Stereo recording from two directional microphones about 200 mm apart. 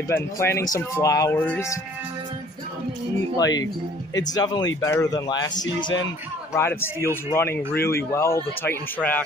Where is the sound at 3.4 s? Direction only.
20° left (ahead or behind).